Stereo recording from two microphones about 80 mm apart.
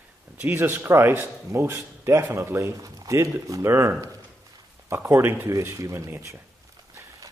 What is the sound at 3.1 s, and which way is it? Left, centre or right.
Speech, right.